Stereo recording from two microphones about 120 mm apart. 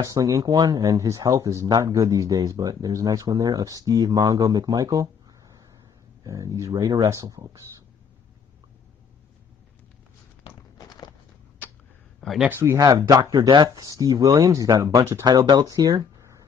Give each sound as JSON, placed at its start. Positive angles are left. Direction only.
{"t": 0.0, "sound": "speech", "side_deg": -30}
{"t": 12.2, "sound": "speech", "side_deg": 0}
{"t": 12.4, "sound": "speech", "side_deg": -20}